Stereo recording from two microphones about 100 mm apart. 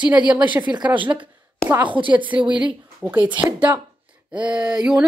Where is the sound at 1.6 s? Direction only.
20° right (ahead or behind).